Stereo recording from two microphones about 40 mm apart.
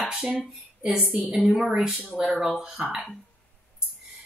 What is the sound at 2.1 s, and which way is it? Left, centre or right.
Speech, right.